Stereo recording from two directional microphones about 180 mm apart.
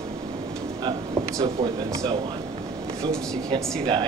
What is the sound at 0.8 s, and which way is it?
Speech, 25° right (ahead or behind).